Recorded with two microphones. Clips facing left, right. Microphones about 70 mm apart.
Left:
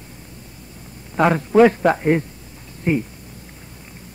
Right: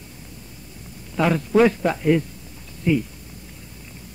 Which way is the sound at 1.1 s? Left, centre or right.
Left.